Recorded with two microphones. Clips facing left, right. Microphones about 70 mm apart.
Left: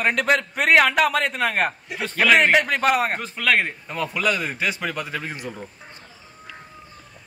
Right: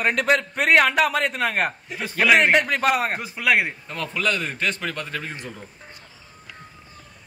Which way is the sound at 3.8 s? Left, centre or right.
Centre.